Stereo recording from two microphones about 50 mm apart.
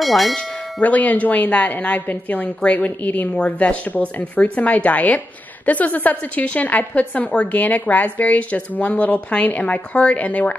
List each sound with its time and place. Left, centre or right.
0.0 s bell: centre
0.7 s a woman's voice: left